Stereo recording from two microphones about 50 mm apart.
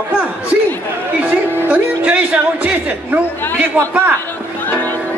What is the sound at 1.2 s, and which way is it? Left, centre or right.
Speech, right.